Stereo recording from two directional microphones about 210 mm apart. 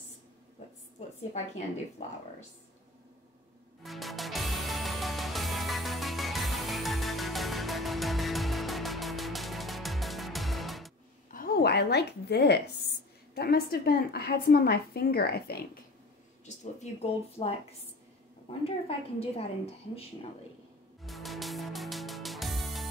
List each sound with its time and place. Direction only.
3.8 s music: centre (ahead or behind)
11.3 s a woman's voice: 45° left (ahead or behind)
16.9 s a woman's voice: 35° left (ahead or behind)
21.0 s music: centre (ahead or behind)